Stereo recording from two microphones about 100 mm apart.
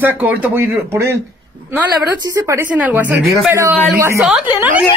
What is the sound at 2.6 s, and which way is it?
Speech, 15° right (ahead or behind).